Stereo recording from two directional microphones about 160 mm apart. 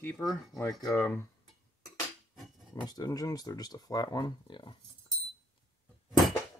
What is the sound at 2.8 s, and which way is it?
Speech, 25° left (ahead or behind).